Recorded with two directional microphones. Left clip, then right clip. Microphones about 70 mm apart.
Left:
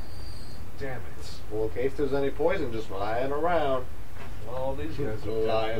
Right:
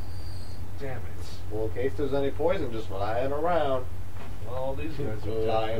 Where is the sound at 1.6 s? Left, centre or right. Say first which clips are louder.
Left 1 dB; left.